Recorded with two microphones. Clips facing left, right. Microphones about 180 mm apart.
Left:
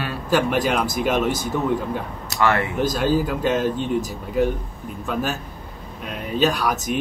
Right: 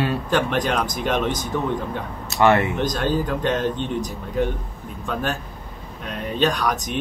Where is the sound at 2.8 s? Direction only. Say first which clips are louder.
Left 2 dB; 5° left (ahead or behind).